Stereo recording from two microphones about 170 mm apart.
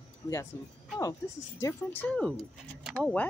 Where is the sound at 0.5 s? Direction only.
15° left (ahead or behind).